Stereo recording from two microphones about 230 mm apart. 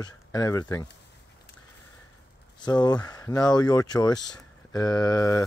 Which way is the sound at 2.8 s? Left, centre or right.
Centre.